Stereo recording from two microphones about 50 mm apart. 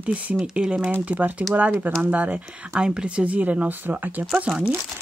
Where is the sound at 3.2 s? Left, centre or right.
Right.